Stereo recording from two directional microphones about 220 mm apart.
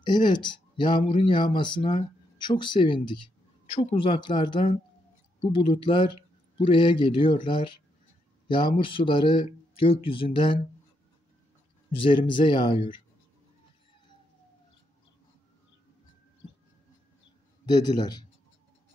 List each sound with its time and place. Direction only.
0.0 s speech: 20° left (ahead or behind)
12.0 s speech: 20° left (ahead or behind)
17.6 s speech: 20° left (ahead or behind)